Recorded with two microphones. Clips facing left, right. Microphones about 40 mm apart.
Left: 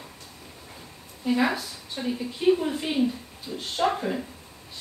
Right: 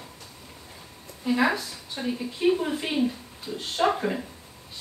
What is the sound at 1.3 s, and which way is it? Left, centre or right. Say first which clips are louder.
A woman's voice: right 1 dB; centre.